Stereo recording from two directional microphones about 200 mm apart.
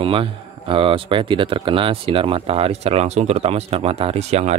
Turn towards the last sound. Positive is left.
turn(degrees=-35)  # may be behind; listen again after turning